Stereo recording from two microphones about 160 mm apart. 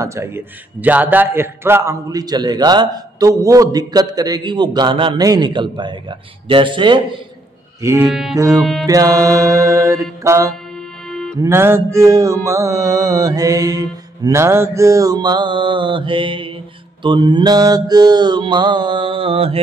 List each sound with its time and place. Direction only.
0.0 s a man's voice: 15° right (ahead or behind)
7.8 s music: 15° right (ahead or behind)
8.1 s music: centre (ahead or behind)
8.4 s a man's voice: 20° right (ahead or behind)
10.2 s music: 20° right (ahead or behind)
11.1 s music: 5° left (ahead or behind)
11.4 s a man's voice: 15° right (ahead or behind); by 19.6 s 35° right (ahead or behind)